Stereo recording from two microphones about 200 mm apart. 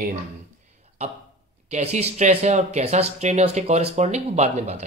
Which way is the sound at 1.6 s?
35° right (ahead or behind).